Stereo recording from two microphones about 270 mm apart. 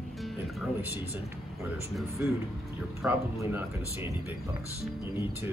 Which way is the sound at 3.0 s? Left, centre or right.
Centre.